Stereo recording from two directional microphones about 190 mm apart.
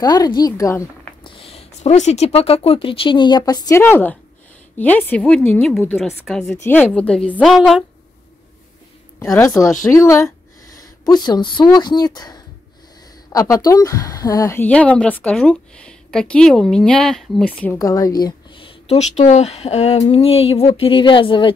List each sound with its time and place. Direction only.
0.0 s speech: 20° left (ahead or behind)
1.3 s a woman's voice: 30° left (ahead or behind); by 7.8 s centre (ahead or behind)
9.2 s a woman's voice: 15° left (ahead or behind)
17.7 s speech: 20° left (ahead or behind)